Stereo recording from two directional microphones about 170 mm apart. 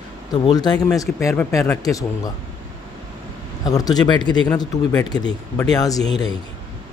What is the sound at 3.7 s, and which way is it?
A man's voice, 20° left (ahead or behind).